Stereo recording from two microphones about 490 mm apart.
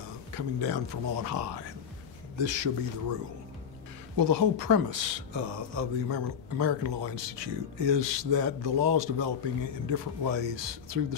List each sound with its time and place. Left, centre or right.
0.3 s speech: right
4.2 s speech: right